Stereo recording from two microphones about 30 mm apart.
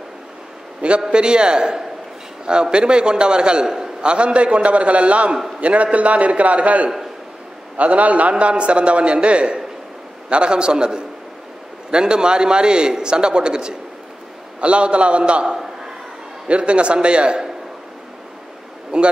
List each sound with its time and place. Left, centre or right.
0.8 s a man's voice: right
14.6 s a man's voice: right
18.9 s a man's voice: right